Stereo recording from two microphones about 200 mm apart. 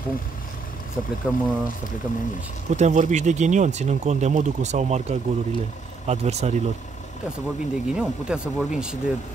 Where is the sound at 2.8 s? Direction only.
35° right (ahead or behind).